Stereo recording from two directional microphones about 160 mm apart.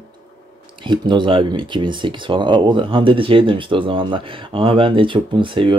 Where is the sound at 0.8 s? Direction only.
30° right (ahead or behind).